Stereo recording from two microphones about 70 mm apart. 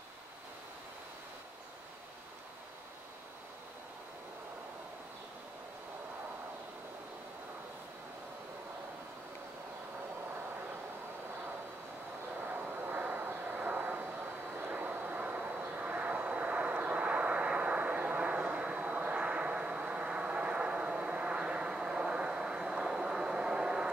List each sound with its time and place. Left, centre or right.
12.4 s vehicle: right; by 23.9 s centre